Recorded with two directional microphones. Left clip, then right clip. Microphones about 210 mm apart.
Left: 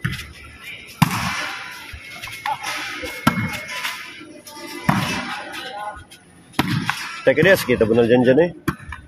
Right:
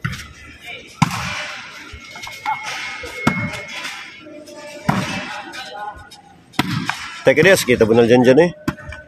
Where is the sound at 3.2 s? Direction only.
20° left (ahead or behind).